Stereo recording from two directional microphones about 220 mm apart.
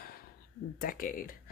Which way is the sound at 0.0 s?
40° left (ahead or behind).